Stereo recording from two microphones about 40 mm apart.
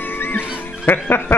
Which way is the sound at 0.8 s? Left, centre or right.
Left.